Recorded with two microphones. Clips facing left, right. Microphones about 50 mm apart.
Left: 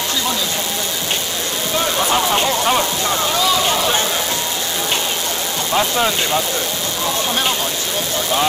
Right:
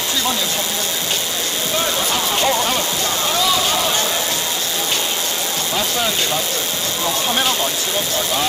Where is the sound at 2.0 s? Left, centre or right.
Left.